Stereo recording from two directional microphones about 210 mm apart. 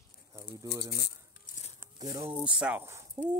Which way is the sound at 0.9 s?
50° left (ahead or behind).